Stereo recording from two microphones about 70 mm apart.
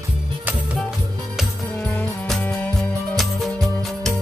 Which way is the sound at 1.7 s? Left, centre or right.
Left.